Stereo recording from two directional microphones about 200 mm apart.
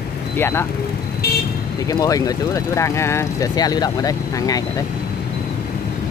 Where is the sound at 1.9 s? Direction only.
20° left (ahead or behind).